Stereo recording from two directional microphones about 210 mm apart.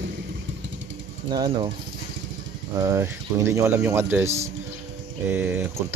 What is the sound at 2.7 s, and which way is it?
Speech, 15° right (ahead or behind).